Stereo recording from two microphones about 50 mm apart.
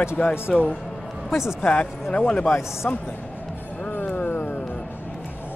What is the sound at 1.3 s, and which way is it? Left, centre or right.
Speech, centre.